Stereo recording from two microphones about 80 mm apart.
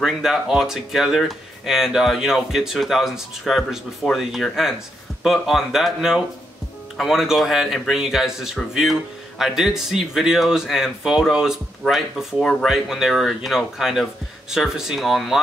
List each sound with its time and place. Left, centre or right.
0.0 s speech: centre
12.6 s speech: centre